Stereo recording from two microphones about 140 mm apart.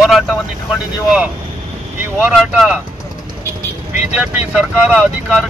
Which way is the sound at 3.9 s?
10° right (ahead or behind).